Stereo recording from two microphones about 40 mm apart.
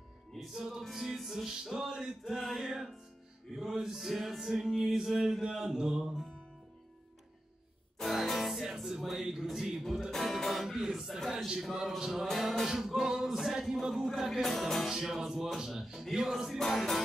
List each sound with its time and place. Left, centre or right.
0.6 s music: centre
2.2 s music: centre
8.0 s music: centre
12.3 s music: centre
12.6 s music: centre
14.9 s music: centre
16.7 s music: centre